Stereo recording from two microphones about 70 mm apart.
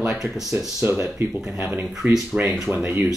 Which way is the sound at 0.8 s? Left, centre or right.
Right.